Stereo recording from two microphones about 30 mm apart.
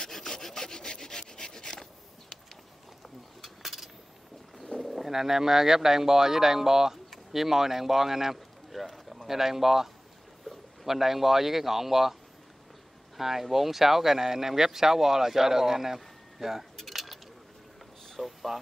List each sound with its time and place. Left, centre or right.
0.1 s wood: centre
0.8 s rub: left
3.4 s a sound: centre
4.7 s bird: centre
5.0 s speech: centre
8.8 s a sound: centre
10.9 s speech: centre
13.2 s speech: centre
16.7 s keys jangling: centre
18.1 s speech: centre